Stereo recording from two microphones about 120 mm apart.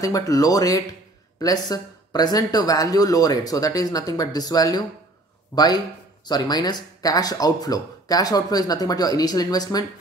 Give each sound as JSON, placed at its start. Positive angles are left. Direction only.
{"t": 0.0, "sound": "speech", "side_deg": 30}